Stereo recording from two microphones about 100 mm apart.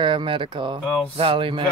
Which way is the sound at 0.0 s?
55° right (ahead or behind).